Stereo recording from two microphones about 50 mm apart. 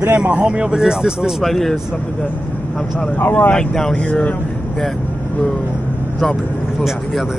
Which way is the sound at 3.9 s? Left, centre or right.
Left.